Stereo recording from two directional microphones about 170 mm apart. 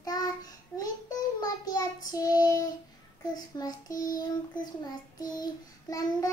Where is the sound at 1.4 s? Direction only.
20° left (ahead or behind).